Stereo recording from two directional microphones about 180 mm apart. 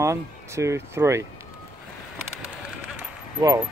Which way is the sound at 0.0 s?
15° right (ahead or behind).